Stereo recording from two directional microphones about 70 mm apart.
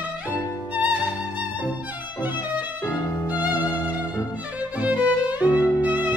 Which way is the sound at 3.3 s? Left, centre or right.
Left.